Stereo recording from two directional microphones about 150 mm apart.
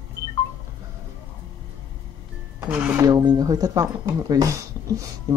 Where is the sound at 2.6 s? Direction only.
10° right (ahead or behind).